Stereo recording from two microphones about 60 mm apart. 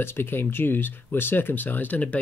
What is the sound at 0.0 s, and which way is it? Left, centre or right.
Speech, left.